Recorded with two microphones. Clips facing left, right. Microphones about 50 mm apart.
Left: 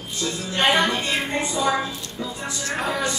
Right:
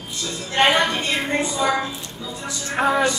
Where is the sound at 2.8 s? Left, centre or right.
Right.